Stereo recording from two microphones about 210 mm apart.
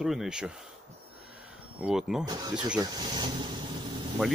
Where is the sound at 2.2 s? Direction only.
20° right (ahead or behind).